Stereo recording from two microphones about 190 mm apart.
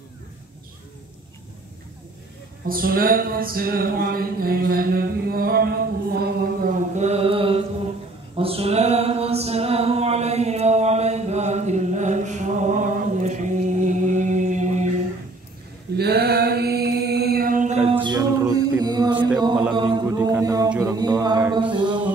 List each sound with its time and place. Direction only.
2.7 s music: 50° right (ahead or behind)
7.0 s mantra: 35° right (ahead or behind)
8.4 s music: 30° right (ahead or behind)
16.0 s mantra: 55° right (ahead or behind); by 17.9 s 35° right (ahead or behind)
18.0 s music: 20° right (ahead or behind)
19.7 s mantra: 25° right (ahead or behind)